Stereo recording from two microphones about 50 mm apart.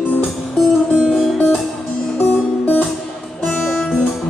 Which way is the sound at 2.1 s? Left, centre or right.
Left.